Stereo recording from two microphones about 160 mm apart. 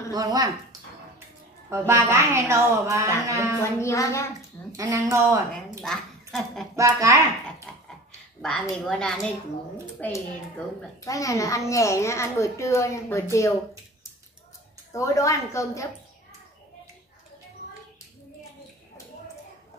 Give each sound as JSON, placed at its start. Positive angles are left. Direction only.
{"t": 0.1, "sound": "a woman's voice", "side_deg": -25}
{"t": 1.7, "sound": "a woman's voice", "side_deg": -15}
{"t": 3.8, "sound": "a woman's voice", "side_deg": 20}
{"t": 4.7, "sound": "a woman's voice", "side_deg": -20}
{"t": 5.8, "sound": "a woman's voice", "side_deg": 0}
{"t": 6.7, "sound": "a woman's voice", "side_deg": -20}
{"t": 7.7, "sound": "a sound", "side_deg": 5}
{"t": 8.4, "sound": "a woman's voice", "side_deg": 5}
{"t": 14.9, "sound": "a child's voice", "side_deg": 20}